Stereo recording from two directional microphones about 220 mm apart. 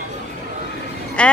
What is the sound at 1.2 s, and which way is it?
Speech, 5° left (ahead or behind).